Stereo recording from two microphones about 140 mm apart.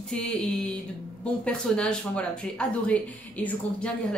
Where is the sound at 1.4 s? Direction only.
5° left (ahead or behind).